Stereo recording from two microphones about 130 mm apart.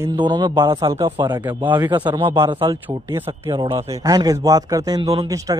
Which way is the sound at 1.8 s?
35° right (ahead or behind).